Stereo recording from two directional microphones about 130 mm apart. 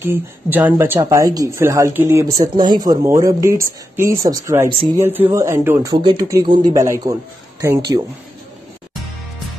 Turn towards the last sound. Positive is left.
turn(degrees=-25)  # may be behind; listen again after turning